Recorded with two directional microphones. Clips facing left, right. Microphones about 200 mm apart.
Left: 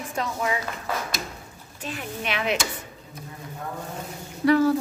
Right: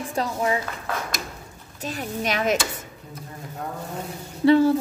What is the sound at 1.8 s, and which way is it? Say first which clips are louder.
Speech: right 4 dB; 40° right (ahead or behind).